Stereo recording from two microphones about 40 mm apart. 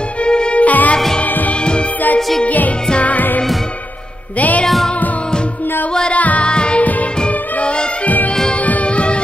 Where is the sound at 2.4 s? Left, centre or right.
Left.